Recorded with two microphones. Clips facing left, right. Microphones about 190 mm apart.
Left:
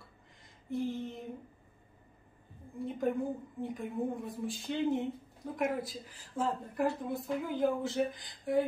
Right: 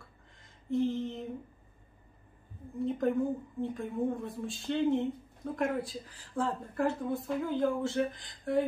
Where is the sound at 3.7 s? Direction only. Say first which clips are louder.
Right 2 dB; 15° left (ahead or behind).